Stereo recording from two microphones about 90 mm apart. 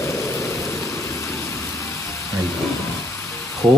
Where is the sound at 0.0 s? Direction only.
30° left (ahead or behind).